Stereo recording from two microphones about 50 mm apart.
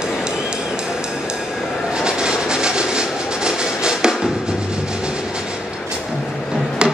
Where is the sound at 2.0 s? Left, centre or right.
Centre.